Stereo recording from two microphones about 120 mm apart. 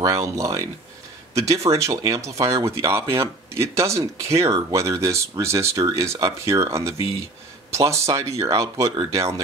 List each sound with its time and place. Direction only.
0.0 s speech: 25° right (ahead or behind)